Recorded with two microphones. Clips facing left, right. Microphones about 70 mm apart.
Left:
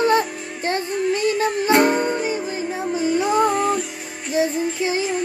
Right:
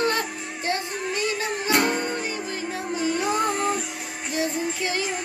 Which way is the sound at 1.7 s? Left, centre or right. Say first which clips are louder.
Left 6 dB; left.